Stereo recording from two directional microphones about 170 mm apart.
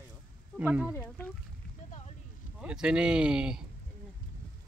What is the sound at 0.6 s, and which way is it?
Speech, 10° right (ahead or behind).